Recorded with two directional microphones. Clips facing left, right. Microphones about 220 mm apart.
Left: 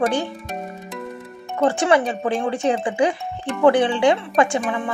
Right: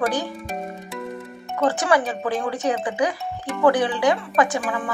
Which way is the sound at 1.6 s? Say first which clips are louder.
Left 3 dB; 25° left (ahead or behind).